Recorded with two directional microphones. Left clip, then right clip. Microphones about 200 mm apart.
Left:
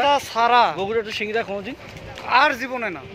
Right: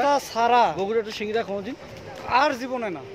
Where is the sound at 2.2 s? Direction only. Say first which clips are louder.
Left 4 dB; 15° right (ahead or behind).